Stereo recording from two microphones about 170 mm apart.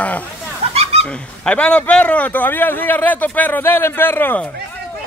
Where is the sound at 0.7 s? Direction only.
35° right (ahead or behind).